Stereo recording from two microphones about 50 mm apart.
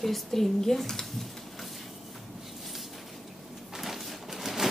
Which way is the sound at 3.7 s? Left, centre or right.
Centre.